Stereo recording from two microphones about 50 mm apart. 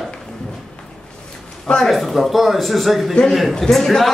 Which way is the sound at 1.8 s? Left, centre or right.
Centre.